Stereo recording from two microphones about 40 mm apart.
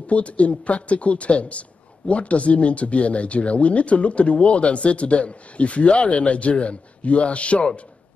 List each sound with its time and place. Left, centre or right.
0.0 s speech: left